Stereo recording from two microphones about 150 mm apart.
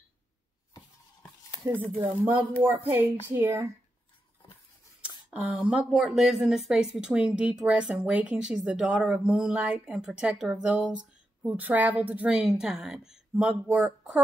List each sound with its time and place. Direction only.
1.6 s speech: 20° right (ahead or behind)
5.0 s speech: 10° right (ahead or behind)